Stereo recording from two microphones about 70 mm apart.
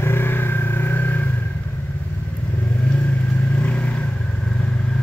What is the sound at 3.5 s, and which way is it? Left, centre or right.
Vehicle, centre.